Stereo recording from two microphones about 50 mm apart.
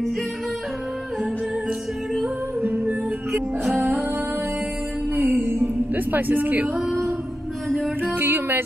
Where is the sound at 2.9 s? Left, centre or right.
Right.